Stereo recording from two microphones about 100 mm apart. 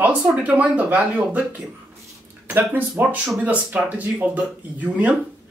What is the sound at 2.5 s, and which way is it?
A woman's voice, 20° right (ahead or behind).